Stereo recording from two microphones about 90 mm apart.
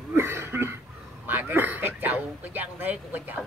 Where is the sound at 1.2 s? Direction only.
20° right (ahead or behind).